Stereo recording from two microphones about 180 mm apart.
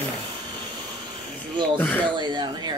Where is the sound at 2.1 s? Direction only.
25° right (ahead or behind).